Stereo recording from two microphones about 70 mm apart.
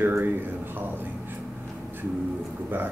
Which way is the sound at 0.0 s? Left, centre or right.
Right.